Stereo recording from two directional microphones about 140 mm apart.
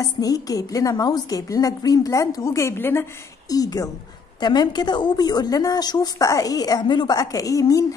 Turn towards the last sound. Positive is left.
turn(degrees=25)  # may be behind; listen again after turning